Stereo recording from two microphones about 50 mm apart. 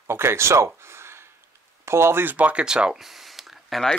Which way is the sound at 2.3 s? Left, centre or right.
Right.